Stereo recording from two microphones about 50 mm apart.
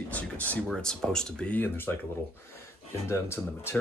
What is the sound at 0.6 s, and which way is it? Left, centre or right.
Speech, centre.